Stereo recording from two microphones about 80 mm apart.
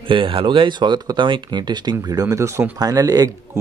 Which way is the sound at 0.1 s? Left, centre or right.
Right.